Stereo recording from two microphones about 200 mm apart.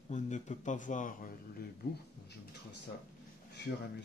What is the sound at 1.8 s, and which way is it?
Speech, 50° left (ahead or behind).